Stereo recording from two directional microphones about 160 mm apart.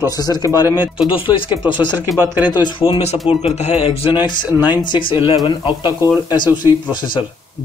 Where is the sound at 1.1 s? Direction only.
30° left (ahead or behind).